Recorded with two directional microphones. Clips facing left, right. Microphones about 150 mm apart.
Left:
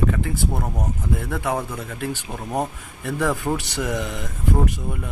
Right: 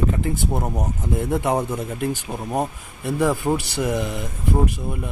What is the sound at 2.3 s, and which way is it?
Speech, 5° right (ahead or behind).